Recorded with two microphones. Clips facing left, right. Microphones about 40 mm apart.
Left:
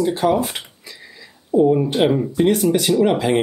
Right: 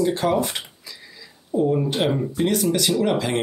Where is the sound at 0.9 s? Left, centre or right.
Left.